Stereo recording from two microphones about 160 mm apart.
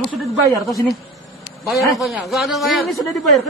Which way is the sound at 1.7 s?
Centre (ahead or behind).